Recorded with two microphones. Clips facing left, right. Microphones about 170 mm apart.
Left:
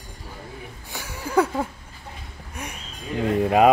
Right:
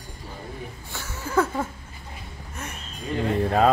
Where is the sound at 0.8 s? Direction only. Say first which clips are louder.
Left 4 dB; 15° left (ahead or behind).